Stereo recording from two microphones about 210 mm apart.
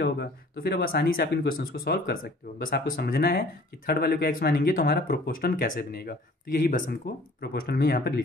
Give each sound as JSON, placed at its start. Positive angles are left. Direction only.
{"t": 0.0, "sound": "speech", "side_deg": 50}